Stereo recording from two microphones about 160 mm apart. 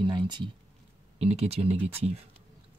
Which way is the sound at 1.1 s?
40° right (ahead or behind).